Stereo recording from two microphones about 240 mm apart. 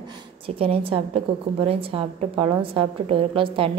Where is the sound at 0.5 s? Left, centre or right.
Right.